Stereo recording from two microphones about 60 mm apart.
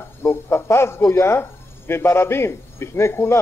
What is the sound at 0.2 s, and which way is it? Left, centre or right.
A man's voice, left.